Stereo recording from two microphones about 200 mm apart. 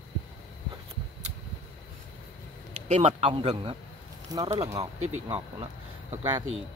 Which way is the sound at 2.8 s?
35° right (ahead or behind).